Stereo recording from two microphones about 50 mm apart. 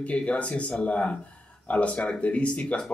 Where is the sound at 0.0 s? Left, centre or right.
Left.